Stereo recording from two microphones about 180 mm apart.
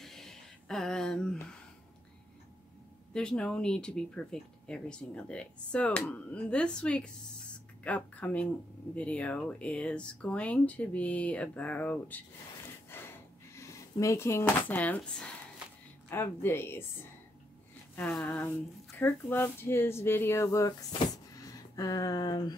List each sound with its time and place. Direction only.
0.0 s a sound: centre (ahead or behind)
3.1 s speech: 5° left (ahead or behind)
12.9 s drawer open or close: 15° left (ahead or behind)
16.1 s speech: 10° left (ahead or behind)
17.9 s speech: 10° left (ahead or behind)
21.0 s a sound: 20° left (ahead or behind)